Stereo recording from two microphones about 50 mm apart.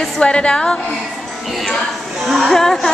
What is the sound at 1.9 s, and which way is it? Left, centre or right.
Speech, centre.